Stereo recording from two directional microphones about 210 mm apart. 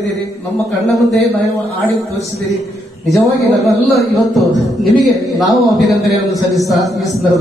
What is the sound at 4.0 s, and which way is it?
A man's voice, centre (ahead or behind).